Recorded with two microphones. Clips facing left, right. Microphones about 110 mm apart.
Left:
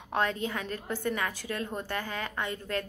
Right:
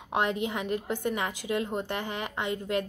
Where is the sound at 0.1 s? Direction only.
15° right (ahead or behind).